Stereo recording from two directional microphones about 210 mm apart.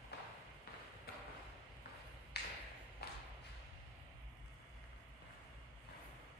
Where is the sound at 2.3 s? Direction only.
50° left (ahead or behind).